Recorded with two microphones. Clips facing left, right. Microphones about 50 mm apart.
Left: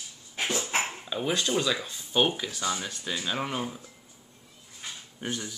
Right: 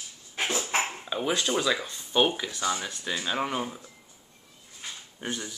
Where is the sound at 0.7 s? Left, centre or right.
Right.